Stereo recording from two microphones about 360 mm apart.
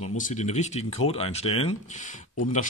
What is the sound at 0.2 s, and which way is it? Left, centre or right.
Speech, centre.